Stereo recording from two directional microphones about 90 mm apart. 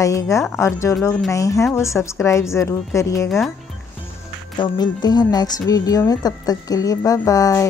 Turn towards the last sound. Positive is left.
turn(degrees=40)  # may be behind; listen again after turning